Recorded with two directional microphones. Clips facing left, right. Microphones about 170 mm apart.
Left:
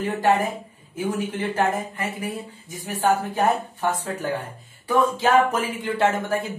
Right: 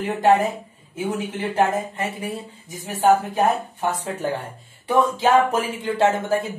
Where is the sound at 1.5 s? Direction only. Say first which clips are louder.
Right 5 dB; 30° right (ahead or behind).